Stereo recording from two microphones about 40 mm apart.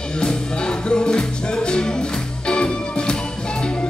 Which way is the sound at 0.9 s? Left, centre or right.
Left.